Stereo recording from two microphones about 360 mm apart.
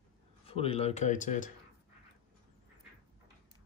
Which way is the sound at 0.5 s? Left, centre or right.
Centre.